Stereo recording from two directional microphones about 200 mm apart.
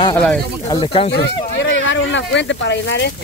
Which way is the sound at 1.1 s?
65° left (ahead or behind).